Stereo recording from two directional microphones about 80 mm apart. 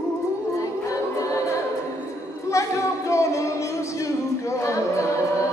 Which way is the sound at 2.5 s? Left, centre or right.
Left.